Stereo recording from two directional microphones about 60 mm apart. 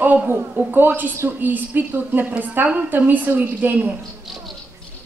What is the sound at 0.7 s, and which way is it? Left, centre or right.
A woman's voice, right.